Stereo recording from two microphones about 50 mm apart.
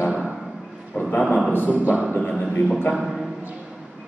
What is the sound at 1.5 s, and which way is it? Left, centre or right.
Speech, left.